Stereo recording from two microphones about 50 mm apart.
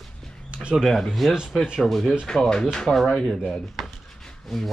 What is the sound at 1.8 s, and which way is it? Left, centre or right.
Speech, centre.